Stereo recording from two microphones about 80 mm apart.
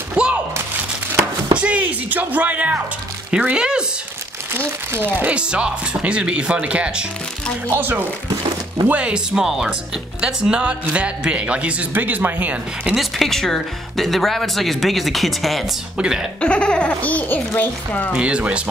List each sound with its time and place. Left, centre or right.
0.1 s a sound: centre
1.6 s speech: centre
4.6 s speech: right
7.7 s speech: right
8.8 s speech: centre
12.9 s speech: centre
16.3 s speech: centre
18.1 s speech: centre